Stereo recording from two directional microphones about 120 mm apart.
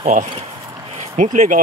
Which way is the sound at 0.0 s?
70° right (ahead or behind).